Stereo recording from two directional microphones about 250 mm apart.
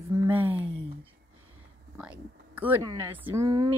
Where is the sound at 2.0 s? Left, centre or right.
Centre.